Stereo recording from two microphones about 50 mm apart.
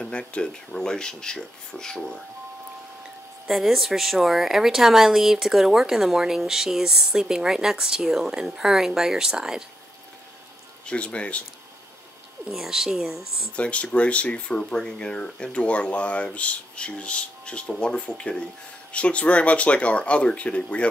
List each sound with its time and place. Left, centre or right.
0.0 s speech: centre
3.4 s speech: centre
10.9 s speech: left
12.4 s speech: centre
13.6 s speech: left